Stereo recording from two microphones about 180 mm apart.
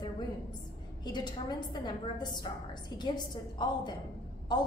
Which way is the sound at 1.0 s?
25° left (ahead or behind).